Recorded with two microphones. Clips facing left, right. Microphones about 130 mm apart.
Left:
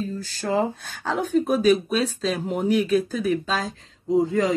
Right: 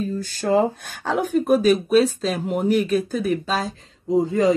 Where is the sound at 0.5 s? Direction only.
55° right (ahead or behind).